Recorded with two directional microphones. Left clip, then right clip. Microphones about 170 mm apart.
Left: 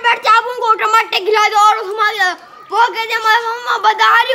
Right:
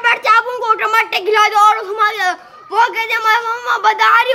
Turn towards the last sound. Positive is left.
turn(degrees=0)  # may be behind; listen again after turning